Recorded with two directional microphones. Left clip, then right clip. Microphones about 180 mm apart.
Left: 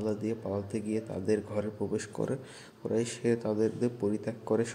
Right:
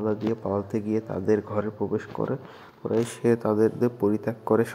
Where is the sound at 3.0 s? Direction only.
20° right (ahead or behind).